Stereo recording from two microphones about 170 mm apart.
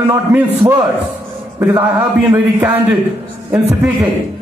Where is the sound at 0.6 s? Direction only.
25° right (ahead or behind).